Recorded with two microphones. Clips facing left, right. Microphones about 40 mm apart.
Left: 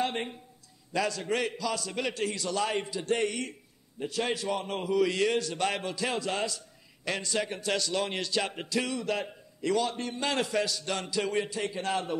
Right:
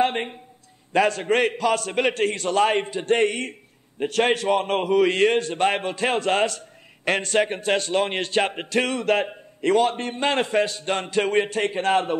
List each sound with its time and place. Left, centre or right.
0.0 s a man's voice: right